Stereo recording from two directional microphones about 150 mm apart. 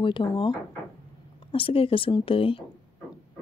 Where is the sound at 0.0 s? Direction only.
35° left (ahead or behind).